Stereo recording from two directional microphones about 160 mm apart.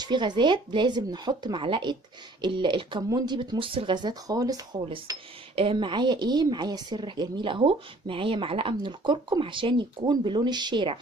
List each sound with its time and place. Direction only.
0.0 s a woman's voice: 30° right (ahead or behind)